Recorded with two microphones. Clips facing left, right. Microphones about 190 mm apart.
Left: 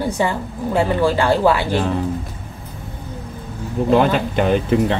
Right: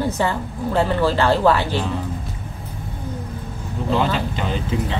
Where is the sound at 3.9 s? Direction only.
55° left (ahead or behind).